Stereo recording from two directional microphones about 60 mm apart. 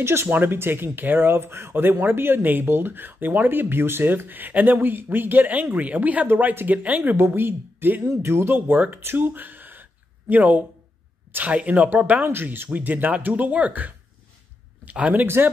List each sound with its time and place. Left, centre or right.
0.0 s speech: right
6.2 s speech: right
8.5 s speech: right
12.6 s speech: right
15.2 s speech: right